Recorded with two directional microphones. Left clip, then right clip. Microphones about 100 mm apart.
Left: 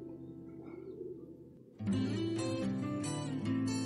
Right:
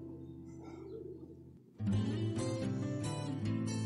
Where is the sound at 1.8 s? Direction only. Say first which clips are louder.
Left 3 dB; 35° right (ahead or behind).